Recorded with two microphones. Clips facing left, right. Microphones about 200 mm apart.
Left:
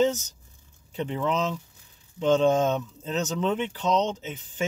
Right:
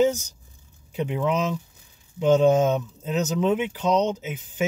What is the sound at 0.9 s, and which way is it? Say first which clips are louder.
Speech: right 3 dB; 10° right (ahead or behind).